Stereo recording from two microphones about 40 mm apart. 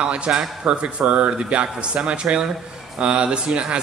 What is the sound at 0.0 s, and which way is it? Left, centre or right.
Speech, right.